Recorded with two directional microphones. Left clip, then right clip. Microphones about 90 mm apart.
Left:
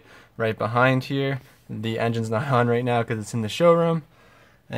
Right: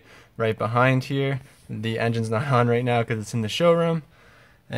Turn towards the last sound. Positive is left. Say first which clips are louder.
# left 2 dB
turn(degrees=15)  # may be behind; listen again after turning